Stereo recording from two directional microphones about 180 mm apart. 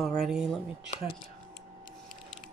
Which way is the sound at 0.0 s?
Centre (ahead or behind).